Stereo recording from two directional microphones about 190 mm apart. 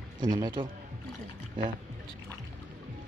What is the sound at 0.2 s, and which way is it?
Speech, 20° right (ahead or behind).